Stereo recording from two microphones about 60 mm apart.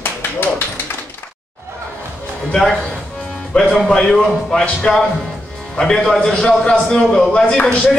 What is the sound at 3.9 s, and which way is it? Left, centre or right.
Speech, centre.